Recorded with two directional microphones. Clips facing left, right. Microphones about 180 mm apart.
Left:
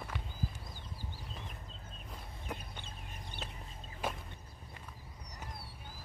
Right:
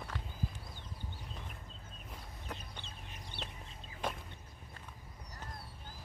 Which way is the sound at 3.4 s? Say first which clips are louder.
Even; 5° left (ahead or behind).